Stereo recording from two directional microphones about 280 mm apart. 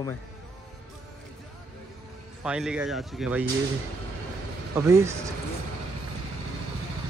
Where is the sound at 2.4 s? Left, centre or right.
Centre.